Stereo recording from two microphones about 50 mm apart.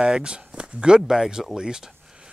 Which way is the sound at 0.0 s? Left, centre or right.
Centre.